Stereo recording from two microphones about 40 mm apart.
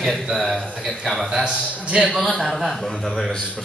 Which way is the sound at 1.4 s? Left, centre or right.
Centre.